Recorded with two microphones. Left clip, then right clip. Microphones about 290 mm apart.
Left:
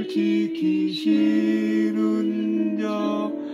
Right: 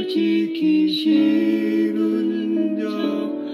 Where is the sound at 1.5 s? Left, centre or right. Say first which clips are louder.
Right 3 dB; centre.